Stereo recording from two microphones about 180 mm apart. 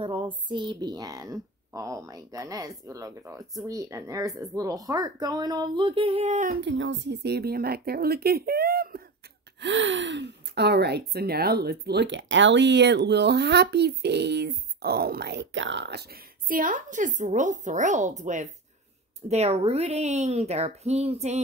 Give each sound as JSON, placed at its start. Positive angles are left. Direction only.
{"t": 0.0, "sound": "speech", "side_deg": -30}
{"t": 6.6, "sound": "speech", "side_deg": -90}
{"t": 9.6, "sound": "a woman's voice", "side_deg": -85}